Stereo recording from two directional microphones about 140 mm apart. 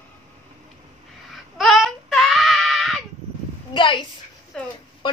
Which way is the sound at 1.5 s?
Centre (ahead or behind).